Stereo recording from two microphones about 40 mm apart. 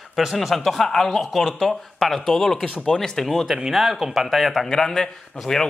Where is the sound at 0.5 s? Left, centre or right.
Centre.